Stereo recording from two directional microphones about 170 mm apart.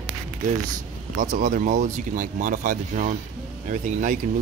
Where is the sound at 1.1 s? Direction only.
50° right (ahead or behind).